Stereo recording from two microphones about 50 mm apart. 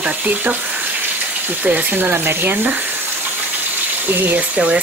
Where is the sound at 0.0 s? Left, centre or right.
Right.